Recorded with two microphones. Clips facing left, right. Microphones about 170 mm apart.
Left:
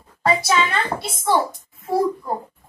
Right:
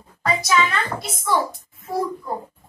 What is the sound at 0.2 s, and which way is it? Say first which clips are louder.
A woman's voice: left 1 dB; 30° left (ahead or behind).